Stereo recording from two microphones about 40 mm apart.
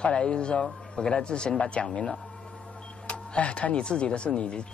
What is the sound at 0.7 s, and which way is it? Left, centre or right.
Speech, centre.